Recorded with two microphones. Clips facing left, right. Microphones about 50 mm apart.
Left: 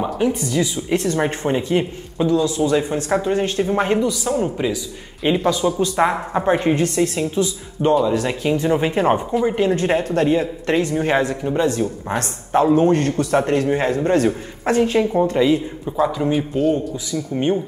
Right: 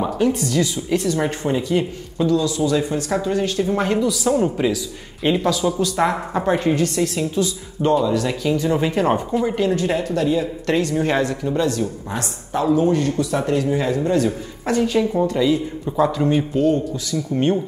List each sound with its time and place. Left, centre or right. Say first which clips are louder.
0.0 s speech: right 1 dB; centre
0.7 s speech: left 1 dB; left
4.1 s a man's voice: right 2 dB; centre
5.8 s speech: left 1 dB; left
9.3 s speech: left 2 dB; centre
10.0 s speech: left 2 dB; left
10.7 s speech: left 1 dB; centre
12.1 s speech: left 5 dB; left
14.8 s speech: left 1 dB; left
15.5 s a man's voice: left 1 dB; centre